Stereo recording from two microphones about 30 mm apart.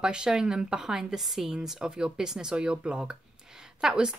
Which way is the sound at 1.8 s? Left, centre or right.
Right.